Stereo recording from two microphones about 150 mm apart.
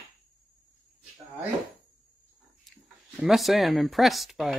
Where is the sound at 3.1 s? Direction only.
Centre (ahead or behind).